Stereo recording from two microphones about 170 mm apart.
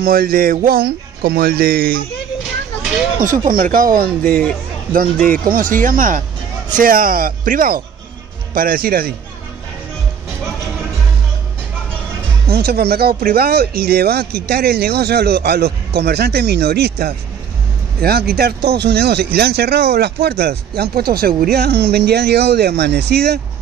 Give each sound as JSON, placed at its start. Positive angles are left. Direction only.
{"t": 0.0, "sound": "speech", "side_deg": -60}
{"t": 3.2, "sound": "speech", "side_deg": -55}
{"t": 4.2, "sound": "speech", "side_deg": 5}
{"t": 5.2, "sound": "speech", "side_deg": -55}
{"t": 12.4, "sound": "speech", "side_deg": -70}